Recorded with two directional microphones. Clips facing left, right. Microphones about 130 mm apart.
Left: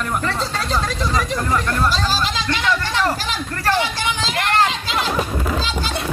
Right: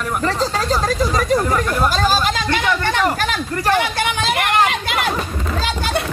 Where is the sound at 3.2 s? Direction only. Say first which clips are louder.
Right 3 dB; 55° right (ahead or behind).